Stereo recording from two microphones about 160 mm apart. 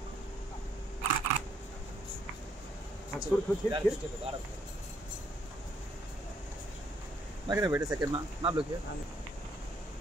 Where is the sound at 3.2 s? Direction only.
30° right (ahead or behind).